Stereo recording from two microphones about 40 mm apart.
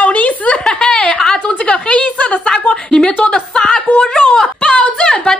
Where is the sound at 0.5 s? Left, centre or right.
Left.